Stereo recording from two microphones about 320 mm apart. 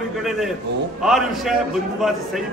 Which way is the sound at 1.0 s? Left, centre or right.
Centre.